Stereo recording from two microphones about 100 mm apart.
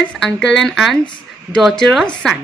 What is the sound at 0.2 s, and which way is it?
Speech, 5° left (ahead or behind).